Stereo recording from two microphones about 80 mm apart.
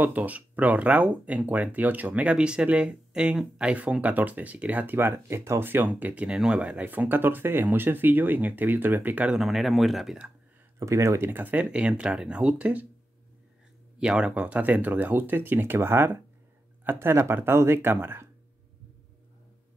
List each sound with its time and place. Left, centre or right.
0.0 s speech: right
9.3 s speech: centre
10.8 s speech: right
11.2 s speech: right
13.9 s speech: centre; by 18.3 s right